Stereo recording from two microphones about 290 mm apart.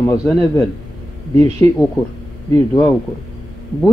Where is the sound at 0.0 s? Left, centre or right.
Centre.